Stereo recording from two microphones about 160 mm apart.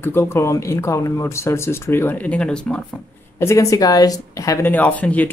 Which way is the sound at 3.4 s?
20° left (ahead or behind).